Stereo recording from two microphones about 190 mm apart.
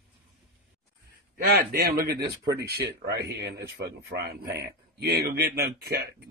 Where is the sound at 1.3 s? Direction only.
50° right (ahead or behind).